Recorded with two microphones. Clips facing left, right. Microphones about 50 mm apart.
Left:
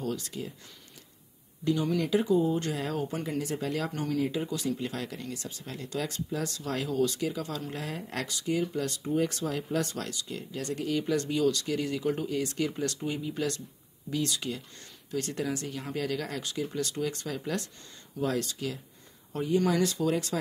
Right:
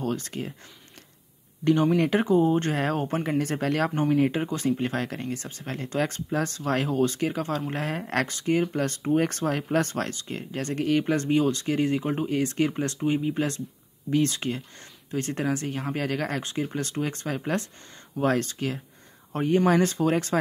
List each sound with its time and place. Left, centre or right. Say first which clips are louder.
0.0 s speech: right 4 dB; right
1.6 s speech: right 7 dB; right
3.9 s speech: right 7 dB; right